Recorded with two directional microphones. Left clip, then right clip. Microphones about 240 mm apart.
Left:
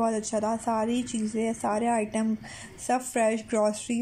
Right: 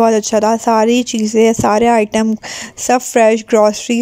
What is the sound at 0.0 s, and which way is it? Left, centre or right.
Speech, right.